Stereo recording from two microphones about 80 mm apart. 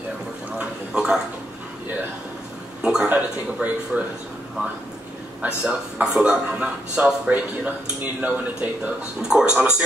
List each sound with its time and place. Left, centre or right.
0.6 s a sound: centre
2.8 s speech: centre
3.1 s speech: right
3.9 s speech: centre
5.4 s speech: centre